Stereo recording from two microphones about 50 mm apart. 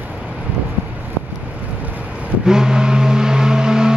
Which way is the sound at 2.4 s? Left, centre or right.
Centre.